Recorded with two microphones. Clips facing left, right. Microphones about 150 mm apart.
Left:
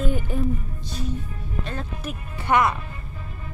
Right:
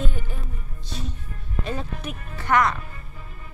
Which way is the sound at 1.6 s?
5° right (ahead or behind).